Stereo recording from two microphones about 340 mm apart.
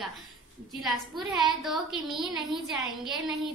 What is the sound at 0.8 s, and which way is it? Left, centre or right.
Speech, centre.